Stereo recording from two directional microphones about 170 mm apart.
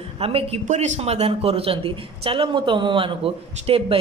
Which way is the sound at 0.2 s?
35° right (ahead or behind).